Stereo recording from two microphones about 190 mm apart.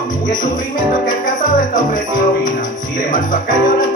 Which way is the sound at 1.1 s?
45° left (ahead or behind).